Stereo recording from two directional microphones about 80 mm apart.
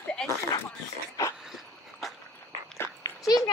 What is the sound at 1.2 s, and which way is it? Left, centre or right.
Speech, left.